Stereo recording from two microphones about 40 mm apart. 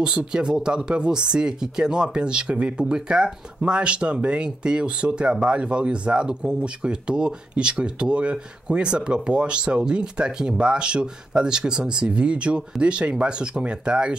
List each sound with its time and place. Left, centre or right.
0.0 s speech: right